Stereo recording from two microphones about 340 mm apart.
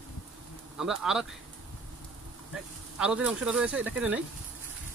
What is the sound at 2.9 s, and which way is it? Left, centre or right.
Speech, centre.